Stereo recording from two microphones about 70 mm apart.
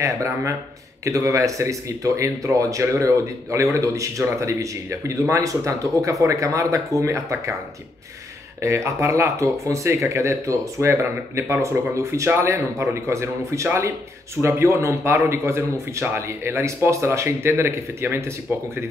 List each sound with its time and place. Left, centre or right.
0.0 s speech: right
8.5 s a man's voice: right